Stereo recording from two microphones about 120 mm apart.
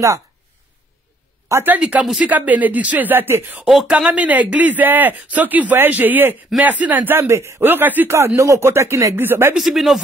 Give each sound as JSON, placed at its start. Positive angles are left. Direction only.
{"t": 1.5, "sound": "speech", "side_deg": -15}
{"t": 3.6, "sound": "speech", "side_deg": -5}
{"t": 9.6, "sound": "speech", "side_deg": 0}